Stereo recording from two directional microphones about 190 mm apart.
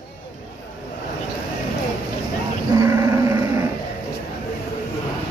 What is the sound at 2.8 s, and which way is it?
Dog, 15° right (ahead or behind).